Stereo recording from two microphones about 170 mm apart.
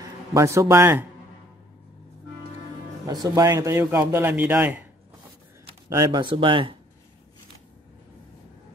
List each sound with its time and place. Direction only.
0.0 s a man's voice: 20° right (ahead or behind)
3.1 s a man's voice: 20° right (ahead or behind)
5.9 s speech: 25° right (ahead or behind)